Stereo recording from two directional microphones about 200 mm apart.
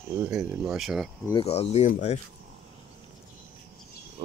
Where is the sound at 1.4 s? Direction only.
30° left (ahead or behind).